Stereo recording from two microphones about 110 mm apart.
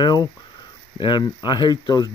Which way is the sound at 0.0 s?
40° left (ahead or behind).